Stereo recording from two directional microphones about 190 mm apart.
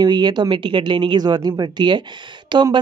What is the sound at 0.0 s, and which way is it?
Speech, 20° right (ahead or behind).